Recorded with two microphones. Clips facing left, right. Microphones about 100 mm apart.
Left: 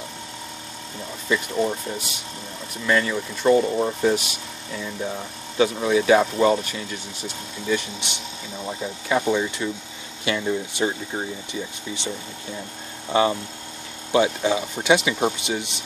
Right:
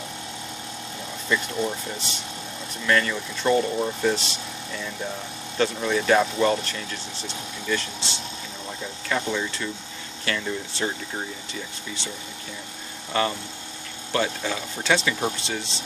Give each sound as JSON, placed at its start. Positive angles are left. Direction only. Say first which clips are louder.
{"t": 1.3, "sound": "speech", "louder": "left 3 dB", "side_deg": 5}
{"t": 13.1, "sound": "speech", "louder": "left 5 dB", "side_deg": 20}